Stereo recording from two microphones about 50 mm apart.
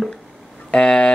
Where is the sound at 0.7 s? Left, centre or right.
Centre.